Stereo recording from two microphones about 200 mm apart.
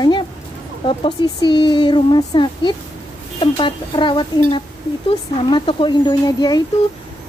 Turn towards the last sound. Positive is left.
turn(degrees=20)  # may be behind; listen again after turning